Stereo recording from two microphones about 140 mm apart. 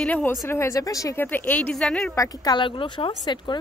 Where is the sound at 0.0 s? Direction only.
10° left (ahead or behind).